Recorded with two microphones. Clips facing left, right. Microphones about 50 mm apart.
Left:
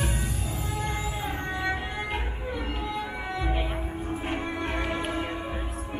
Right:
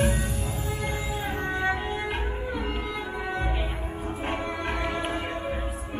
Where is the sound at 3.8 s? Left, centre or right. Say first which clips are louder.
Even; centre.